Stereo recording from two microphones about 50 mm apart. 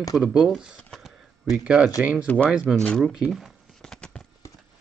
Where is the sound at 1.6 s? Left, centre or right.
Right.